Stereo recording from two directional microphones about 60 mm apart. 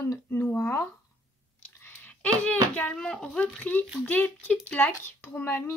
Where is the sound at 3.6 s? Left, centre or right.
Left.